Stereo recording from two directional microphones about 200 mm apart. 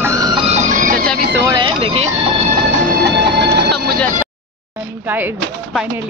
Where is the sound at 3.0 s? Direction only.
55° right (ahead or behind).